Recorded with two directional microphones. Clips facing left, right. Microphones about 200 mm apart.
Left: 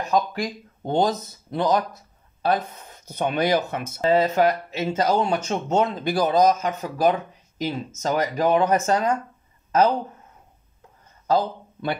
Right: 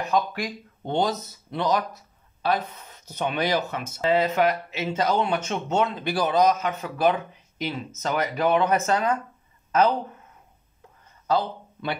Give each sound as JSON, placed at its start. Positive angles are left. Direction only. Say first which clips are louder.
{"t": 0.1, "sound": "speech", "louder": "left 3 dB", "side_deg": 40}
{"t": 11.2, "sound": "speech", "louder": "left 3 dB", "side_deg": 45}